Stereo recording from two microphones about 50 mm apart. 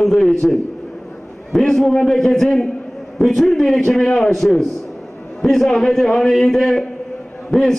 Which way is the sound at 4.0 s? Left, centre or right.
Centre.